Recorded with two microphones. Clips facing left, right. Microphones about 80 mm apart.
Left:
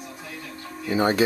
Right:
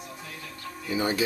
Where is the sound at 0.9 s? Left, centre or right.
Left.